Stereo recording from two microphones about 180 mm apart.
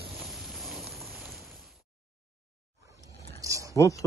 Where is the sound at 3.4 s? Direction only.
20° right (ahead or behind).